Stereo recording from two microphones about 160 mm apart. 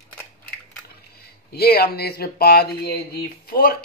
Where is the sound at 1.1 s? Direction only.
75° left (ahead or behind).